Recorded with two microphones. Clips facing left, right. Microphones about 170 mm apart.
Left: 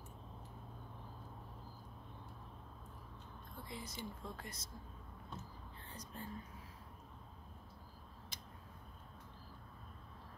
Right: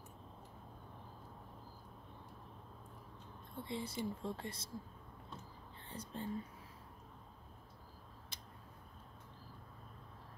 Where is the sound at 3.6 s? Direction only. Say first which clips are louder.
Right 7 dB; 25° right (ahead or behind).